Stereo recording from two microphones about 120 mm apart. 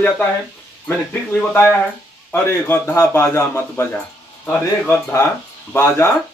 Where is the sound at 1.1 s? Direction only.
20° left (ahead or behind).